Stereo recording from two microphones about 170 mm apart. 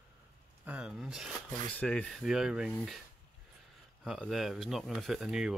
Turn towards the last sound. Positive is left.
turn(degrees=-5)  # may be behind; listen again after turning